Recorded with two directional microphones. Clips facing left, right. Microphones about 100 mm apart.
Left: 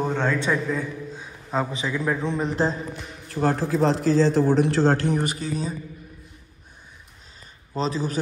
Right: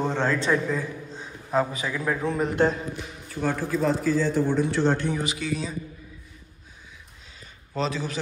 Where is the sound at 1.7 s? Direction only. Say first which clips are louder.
Left 2 dB; 20° left (ahead or behind).